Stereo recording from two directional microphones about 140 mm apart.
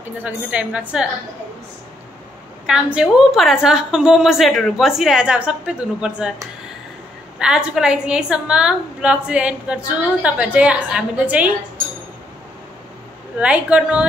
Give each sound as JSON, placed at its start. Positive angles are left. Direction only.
{"t": 0.2, "sound": "a woman's voice", "side_deg": -10}
{"t": 2.6, "sound": "a woman's voice", "side_deg": -5}
{"t": 7.3, "sound": "a woman's voice", "side_deg": -5}
{"t": 13.4, "sound": "a woman's voice", "side_deg": -10}